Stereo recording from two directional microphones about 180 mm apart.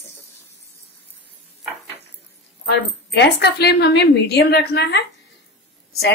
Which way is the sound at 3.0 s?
70° left (ahead or behind).